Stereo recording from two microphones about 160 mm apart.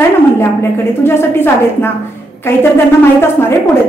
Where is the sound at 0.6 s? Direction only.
15° left (ahead or behind).